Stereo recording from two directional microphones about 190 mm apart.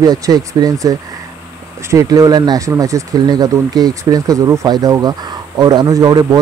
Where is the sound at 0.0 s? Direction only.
20° right (ahead or behind).